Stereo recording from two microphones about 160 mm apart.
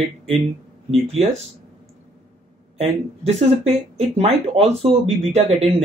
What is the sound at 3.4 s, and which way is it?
Speech, 40° right (ahead or behind).